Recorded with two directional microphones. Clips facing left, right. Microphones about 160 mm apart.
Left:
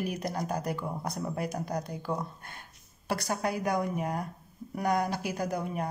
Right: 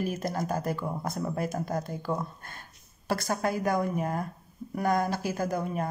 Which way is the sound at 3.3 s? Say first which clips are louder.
Right 2 dB; 15° left (ahead or behind).